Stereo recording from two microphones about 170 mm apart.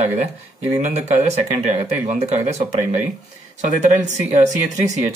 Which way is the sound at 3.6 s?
45° right (ahead or behind).